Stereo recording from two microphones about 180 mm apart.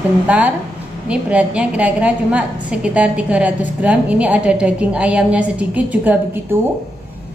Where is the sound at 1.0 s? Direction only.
5° right (ahead or behind).